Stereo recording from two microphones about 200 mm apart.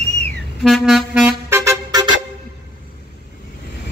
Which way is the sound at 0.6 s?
Centre (ahead or behind).